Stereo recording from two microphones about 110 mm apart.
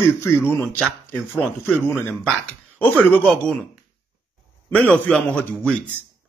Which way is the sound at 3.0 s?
15° left (ahead or behind).